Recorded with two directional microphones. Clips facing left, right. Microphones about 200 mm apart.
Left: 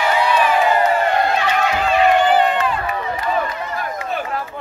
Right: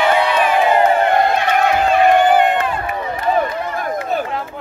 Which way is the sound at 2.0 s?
50° right (ahead or behind).